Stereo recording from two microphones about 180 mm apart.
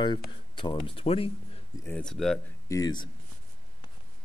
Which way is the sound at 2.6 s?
20° left (ahead or behind).